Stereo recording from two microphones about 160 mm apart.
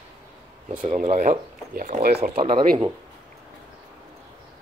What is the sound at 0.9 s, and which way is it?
Speech, 55° right (ahead or behind).